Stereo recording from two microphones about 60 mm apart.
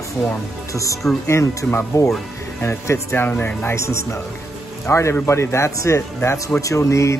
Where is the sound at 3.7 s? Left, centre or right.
Left.